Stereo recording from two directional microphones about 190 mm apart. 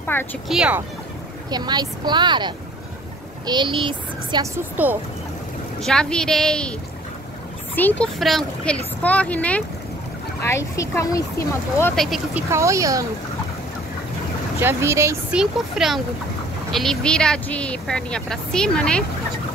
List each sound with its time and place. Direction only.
0.0 s speech: 10° left (ahead or behind)
0.5 s speech: 5° right (ahead or behind)
1.5 s speech: 20° right (ahead or behind)
4.8 s speech: 10° right (ahead or behind)
5.8 s speech: 5° left (ahead or behind)
7.7 s speech: 5° left (ahead or behind)
11.9 s speech: centre (ahead or behind)
12.4 s speech: 15° right (ahead or behind)
14.6 s speech: 10° right (ahead or behind)
15.3 s speech: centre (ahead or behind)